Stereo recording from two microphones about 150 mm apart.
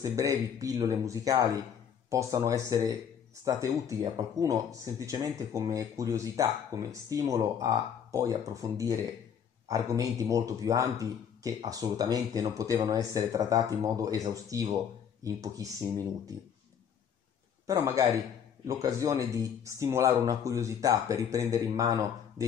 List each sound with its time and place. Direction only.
0.0 s speech: 20° right (ahead or behind)
17.6 s speech: 20° right (ahead or behind)